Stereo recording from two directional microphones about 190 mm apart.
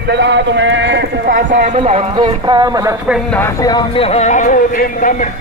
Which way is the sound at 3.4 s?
20° left (ahead or behind).